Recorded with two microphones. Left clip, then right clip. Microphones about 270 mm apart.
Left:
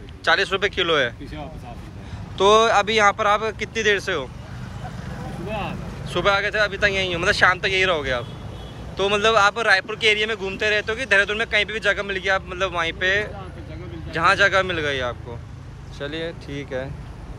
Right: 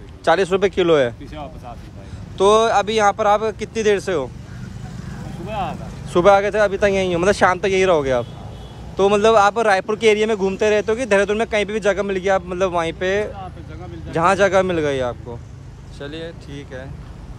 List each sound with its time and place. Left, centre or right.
0.2 s speech: right
6.0 s speech: right
16.0 s speech: centre